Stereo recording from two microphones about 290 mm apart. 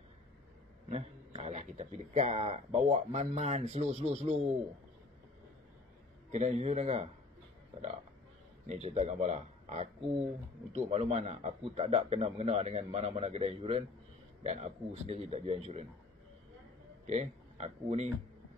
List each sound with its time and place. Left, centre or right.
0.8 s speech: right
6.3 s speech: right
8.6 s speech: right
17.0 s speech: right